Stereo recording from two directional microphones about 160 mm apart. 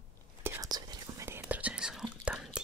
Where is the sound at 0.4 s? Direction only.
20° right (ahead or behind).